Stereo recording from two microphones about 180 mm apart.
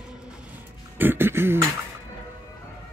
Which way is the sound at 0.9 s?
10° right (ahead or behind).